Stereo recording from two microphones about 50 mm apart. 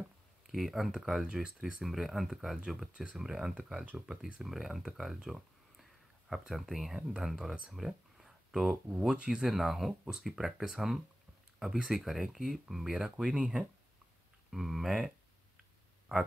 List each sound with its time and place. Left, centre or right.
0.5 s speech: centre
1.2 s speech: centre
1.6 s speech: centre
2.9 s speech: right
3.2 s speech: centre
7.7 s a sound: centre
8.8 s speech: centre
9.5 s speech: centre
14.5 s speech: centre